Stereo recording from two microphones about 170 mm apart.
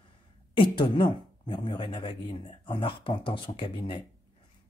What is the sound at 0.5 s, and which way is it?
Speech, 30° left (ahead or behind).